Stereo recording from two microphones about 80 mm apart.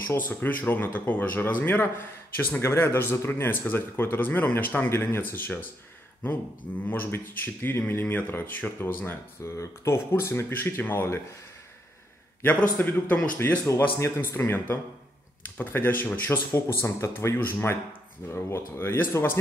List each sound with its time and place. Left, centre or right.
0.0 s speech: left
6.9 s speech: left
12.4 s speech: left